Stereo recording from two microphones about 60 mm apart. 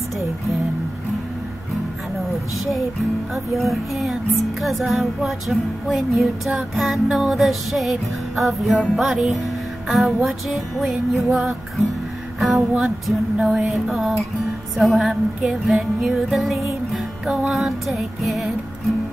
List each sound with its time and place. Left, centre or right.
2.7 s music: centre